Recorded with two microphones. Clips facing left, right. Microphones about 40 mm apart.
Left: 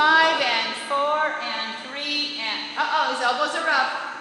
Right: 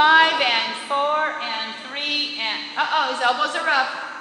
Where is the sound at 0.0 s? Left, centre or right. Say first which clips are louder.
Right 3 dB; right.